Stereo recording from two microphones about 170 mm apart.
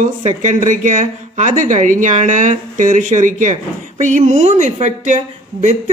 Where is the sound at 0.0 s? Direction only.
45° right (ahead or behind).